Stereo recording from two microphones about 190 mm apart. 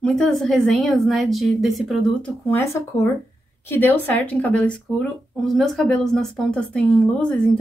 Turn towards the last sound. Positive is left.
turn(degrees=5)  # may be behind; listen again after turning